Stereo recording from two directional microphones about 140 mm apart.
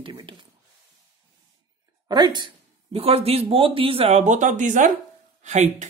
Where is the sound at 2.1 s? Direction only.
30° right (ahead or behind).